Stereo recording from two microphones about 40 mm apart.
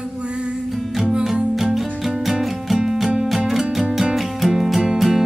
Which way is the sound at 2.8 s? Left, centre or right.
Centre.